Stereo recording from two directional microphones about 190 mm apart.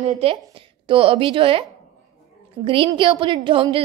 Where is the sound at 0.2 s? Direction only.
30° right (ahead or behind).